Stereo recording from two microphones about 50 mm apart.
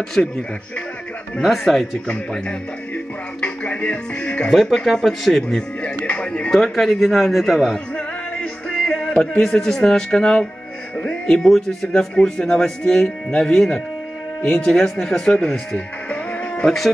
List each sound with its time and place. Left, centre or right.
0.2 s speech: left
1.4 s speech: centre
3.3 s speech: left
4.5 s speech: centre
6.0 s speech: left
6.7 s speech: centre
7.7 s music: centre
11.2 s speech: centre